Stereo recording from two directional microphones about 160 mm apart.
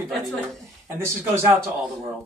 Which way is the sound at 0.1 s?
Centre (ahead or behind).